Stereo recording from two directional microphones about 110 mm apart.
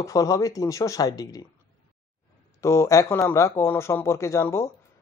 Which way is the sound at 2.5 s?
25° left (ahead or behind).